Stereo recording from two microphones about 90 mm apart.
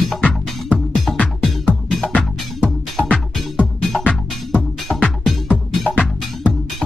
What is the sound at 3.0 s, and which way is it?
Music, 10° left (ahead or behind).